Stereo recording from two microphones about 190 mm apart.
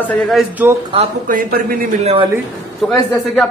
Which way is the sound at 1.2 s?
50° right (ahead or behind).